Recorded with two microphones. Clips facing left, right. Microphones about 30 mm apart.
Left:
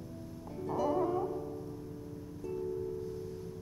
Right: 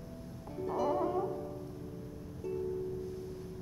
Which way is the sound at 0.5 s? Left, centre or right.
Centre.